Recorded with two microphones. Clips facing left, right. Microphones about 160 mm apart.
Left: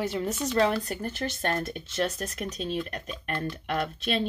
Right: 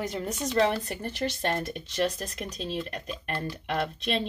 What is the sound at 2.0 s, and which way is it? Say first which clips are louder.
Speech: right 1 dB; 10° right (ahead or behind).